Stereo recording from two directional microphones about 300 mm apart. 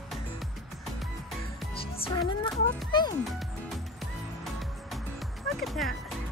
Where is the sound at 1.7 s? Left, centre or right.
Centre.